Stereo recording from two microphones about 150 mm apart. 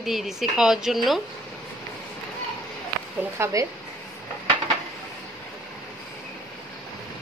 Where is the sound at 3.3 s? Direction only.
20° right (ahead or behind).